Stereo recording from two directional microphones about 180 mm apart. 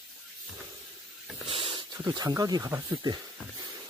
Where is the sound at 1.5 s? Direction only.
30° right (ahead or behind).